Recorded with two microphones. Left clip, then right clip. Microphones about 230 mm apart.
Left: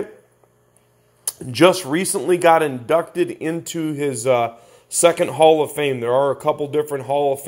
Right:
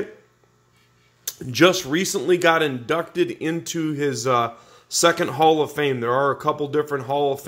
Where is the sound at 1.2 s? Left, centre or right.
Centre.